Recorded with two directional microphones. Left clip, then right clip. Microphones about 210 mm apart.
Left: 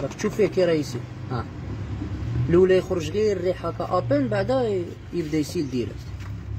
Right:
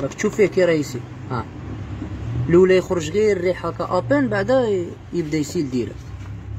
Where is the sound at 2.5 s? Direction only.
30° right (ahead or behind).